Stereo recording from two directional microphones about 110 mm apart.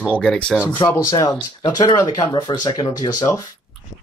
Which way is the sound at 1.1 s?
30° left (ahead or behind).